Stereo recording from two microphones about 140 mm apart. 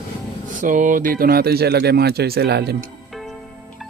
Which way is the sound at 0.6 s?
70° right (ahead or behind).